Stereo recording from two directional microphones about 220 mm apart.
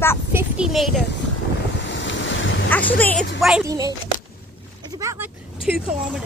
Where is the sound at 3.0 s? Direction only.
5° left (ahead or behind).